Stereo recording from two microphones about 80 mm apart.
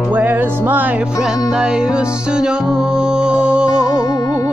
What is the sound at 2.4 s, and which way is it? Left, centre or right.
Music, centre.